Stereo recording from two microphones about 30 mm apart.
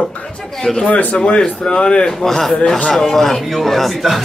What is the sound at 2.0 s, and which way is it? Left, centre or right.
A man's voice, centre.